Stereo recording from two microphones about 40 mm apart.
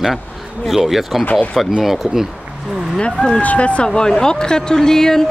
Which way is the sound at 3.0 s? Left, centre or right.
Left.